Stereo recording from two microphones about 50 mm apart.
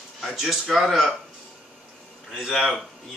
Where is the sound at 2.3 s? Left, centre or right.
Centre.